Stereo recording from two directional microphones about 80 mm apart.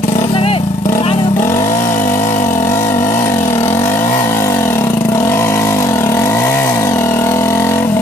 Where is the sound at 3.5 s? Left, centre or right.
Left.